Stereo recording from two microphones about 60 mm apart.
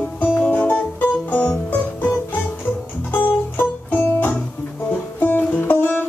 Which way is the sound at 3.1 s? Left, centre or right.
Left.